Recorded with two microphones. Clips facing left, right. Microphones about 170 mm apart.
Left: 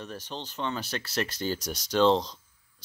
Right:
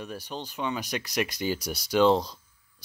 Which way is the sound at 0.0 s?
10° right (ahead or behind).